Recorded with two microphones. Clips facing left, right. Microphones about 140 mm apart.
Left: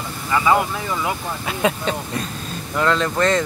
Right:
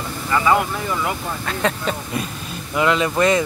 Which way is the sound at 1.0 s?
10° left (ahead or behind).